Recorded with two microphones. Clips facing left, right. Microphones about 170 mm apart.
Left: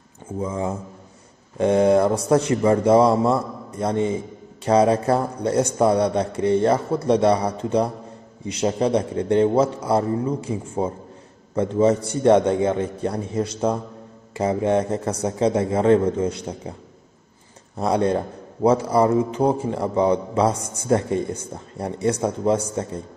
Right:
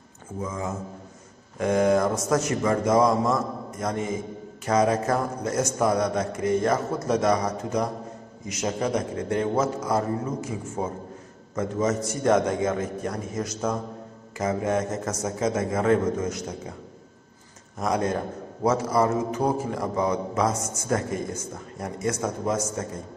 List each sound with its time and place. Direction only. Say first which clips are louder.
0.4 s a man's voice: left 5 dB; 30° left (ahead or behind)
17.7 s a man's voice: left 5 dB; 30° left (ahead or behind)